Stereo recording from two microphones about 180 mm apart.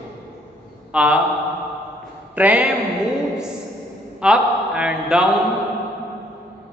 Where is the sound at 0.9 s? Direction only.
5° right (ahead or behind).